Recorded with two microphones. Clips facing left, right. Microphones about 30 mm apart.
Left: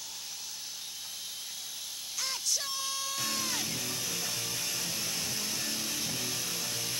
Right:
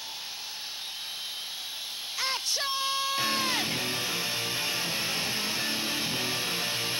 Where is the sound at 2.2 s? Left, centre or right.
Right.